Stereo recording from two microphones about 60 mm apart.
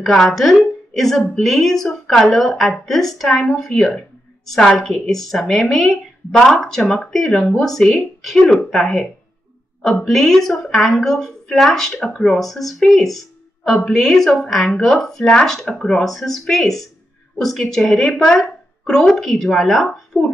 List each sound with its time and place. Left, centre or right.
0.0 s speech: centre
10.0 s a woman's voice: centre
20.1 s a child's voice: left